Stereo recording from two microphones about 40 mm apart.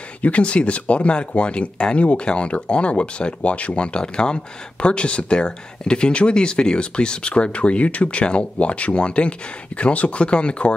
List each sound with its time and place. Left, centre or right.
0.2 s speech: left